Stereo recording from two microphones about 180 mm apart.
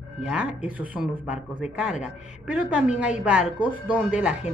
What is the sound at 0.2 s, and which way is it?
A woman's voice, 5° right (ahead or behind).